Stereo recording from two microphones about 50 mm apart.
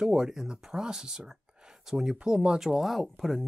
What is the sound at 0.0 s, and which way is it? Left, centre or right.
Speech, centre.